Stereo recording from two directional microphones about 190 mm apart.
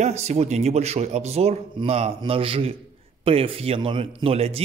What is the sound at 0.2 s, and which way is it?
Speech, 35° right (ahead or behind).